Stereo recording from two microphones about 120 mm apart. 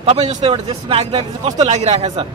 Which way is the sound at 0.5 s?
55° right (ahead or behind).